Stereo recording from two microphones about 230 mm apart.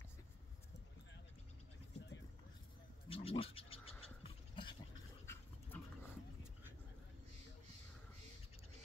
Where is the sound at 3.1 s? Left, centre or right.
Left.